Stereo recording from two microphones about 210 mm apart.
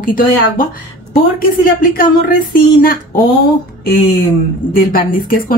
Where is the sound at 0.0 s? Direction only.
40° left (ahead or behind).